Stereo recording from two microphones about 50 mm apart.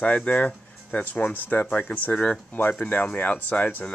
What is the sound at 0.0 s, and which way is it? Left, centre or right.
Speech, left.